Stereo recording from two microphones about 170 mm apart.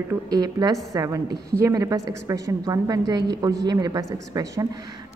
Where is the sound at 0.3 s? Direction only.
25° right (ahead or behind).